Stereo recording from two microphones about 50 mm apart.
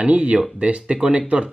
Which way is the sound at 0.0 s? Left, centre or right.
Right.